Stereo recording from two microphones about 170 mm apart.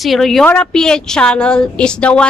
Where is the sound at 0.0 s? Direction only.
Centre (ahead or behind).